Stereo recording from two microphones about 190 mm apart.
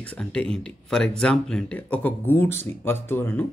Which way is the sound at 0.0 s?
5° left (ahead or behind).